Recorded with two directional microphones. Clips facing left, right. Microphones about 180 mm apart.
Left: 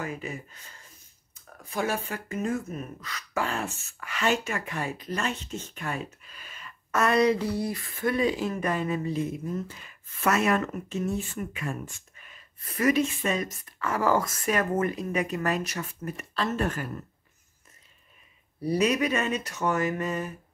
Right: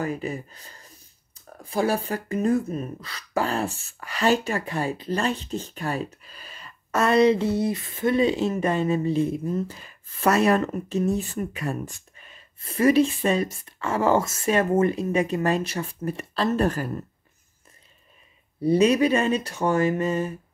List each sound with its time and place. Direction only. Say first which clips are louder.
0.0 s speech: right 6 dB; 35° right (ahead or behind)
18.6 s speech: right 6 dB; 25° right (ahead or behind)